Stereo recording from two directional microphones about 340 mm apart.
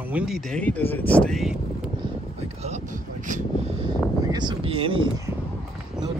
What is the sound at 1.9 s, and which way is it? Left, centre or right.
Vehicle, centre.